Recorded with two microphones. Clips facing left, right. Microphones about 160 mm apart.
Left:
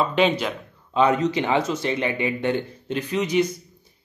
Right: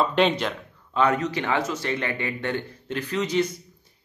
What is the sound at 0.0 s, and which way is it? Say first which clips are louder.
Speech: left 1 dB; 5° left (ahead or behind).